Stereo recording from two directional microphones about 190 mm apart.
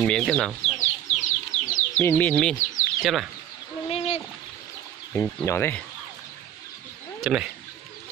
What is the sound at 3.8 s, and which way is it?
Bird, 30° left (ahead or behind).